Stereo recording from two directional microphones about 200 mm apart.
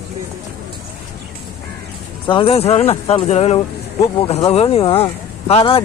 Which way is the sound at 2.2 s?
25° left (ahead or behind).